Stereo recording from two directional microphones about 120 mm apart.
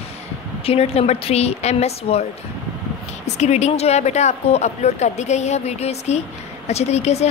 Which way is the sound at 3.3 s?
70° left (ahead or behind).